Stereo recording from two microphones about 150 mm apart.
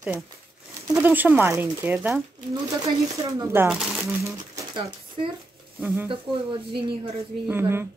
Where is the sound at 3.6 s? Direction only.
5° right (ahead or behind).